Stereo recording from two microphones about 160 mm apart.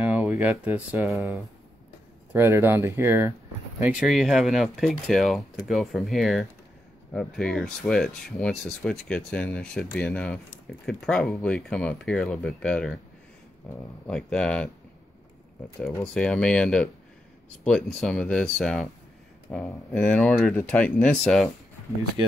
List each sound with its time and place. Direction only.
0.0 s speech: 5° right (ahead or behind)
2.3 s speech: 15° right (ahead or behind)
3.8 s speech: 5° right (ahead or behind)
16.1 s speech: 5° left (ahead or behind)